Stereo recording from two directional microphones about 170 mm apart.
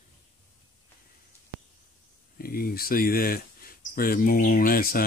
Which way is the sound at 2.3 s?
60° left (ahead or behind).